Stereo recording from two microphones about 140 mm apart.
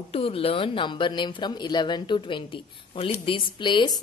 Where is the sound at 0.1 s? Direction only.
40° left (ahead or behind).